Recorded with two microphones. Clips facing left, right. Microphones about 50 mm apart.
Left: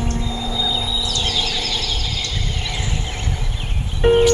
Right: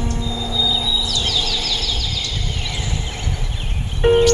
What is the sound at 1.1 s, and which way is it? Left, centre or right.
Bird, left.